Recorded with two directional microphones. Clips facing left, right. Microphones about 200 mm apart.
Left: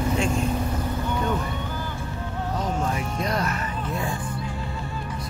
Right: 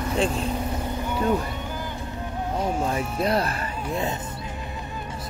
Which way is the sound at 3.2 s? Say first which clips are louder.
Right 3 dB; 30° right (ahead or behind).